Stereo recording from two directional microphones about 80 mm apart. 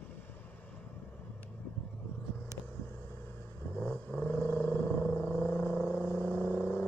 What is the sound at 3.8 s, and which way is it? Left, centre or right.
Vehicle, left.